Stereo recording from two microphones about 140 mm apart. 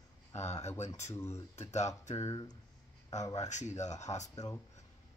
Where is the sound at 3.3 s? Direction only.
55° left (ahead or behind).